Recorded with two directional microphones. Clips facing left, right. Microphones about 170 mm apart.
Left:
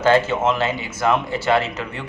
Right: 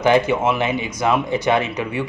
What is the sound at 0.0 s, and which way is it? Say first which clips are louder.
Speech: right 1 dB; 15° right (ahead or behind).